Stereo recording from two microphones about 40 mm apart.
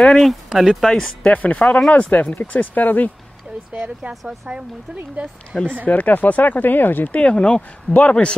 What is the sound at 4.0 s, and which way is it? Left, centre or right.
Speech, centre.